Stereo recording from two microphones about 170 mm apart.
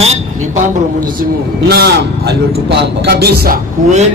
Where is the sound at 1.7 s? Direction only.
70° right (ahead or behind).